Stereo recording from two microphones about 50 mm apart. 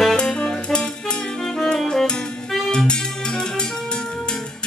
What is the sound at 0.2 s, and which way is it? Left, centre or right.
Music, centre.